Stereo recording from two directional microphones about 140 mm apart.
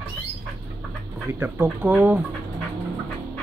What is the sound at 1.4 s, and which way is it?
Speech, 15° right (ahead or behind).